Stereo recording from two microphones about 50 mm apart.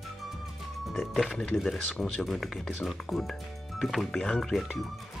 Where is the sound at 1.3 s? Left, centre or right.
Centre.